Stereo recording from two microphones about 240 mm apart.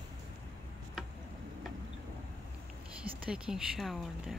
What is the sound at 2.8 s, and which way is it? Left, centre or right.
A woman's voice, centre.